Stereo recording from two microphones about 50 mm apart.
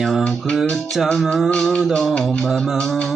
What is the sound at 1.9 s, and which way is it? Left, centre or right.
Music, centre.